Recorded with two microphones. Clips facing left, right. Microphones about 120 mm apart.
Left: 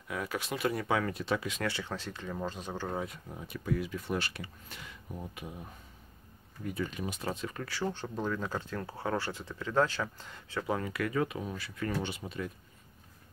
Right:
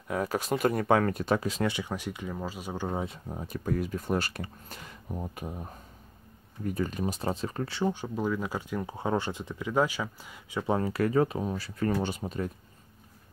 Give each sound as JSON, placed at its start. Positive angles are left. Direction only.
{"t": 0.1, "sound": "speech", "side_deg": -40}
{"t": 1.6, "sound": "speech", "side_deg": -15}
{"t": 7.9, "sound": "speech", "side_deg": -10}
{"t": 10.6, "sound": "speech", "side_deg": -30}